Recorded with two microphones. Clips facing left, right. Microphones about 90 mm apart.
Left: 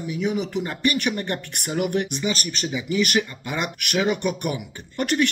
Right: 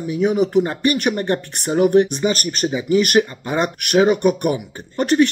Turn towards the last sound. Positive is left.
turn(degrees=-35)  # may be behind; listen again after turning